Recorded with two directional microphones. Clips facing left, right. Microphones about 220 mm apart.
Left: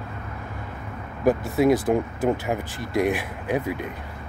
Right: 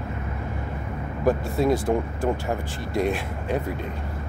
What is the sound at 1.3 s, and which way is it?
Speech, 15° left (ahead or behind).